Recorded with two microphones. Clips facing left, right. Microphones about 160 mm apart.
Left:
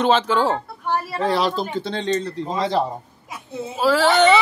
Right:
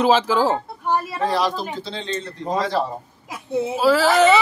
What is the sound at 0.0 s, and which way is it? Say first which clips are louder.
Speech: right 1 dB; 5° right (ahead or behind).